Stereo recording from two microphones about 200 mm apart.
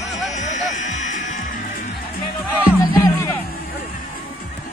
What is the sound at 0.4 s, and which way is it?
Music, 35° left (ahead or behind).